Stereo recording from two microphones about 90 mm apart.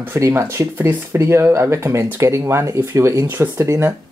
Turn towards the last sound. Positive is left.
turn(degrees=-30)  # may be behind; listen again after turning